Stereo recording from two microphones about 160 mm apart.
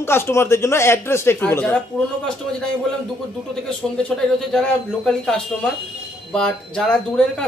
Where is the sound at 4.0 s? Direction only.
5° left (ahead or behind).